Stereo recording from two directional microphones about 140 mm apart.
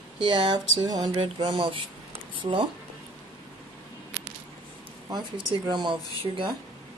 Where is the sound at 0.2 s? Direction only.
35° right (ahead or behind).